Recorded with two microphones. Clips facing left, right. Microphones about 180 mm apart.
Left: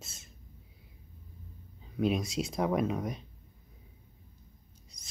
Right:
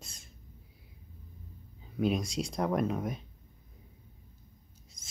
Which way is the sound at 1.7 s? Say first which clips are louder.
Even; centre (ahead or behind).